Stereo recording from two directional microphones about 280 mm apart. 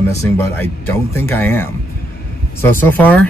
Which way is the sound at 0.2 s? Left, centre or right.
Centre.